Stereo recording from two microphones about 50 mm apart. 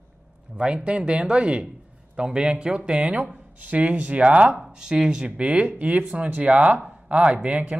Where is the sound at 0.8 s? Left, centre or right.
Right.